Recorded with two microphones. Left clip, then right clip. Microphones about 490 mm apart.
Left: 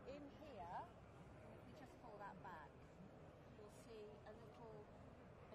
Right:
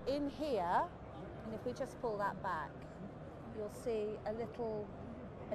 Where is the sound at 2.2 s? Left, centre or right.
Right.